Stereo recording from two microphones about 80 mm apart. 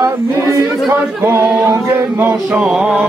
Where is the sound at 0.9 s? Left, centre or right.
Right.